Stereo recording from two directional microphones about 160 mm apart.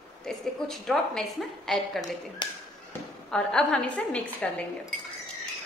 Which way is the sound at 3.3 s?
5° left (ahead or behind).